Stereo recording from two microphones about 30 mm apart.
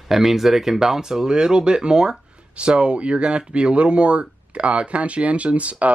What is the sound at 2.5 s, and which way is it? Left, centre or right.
Speech, right.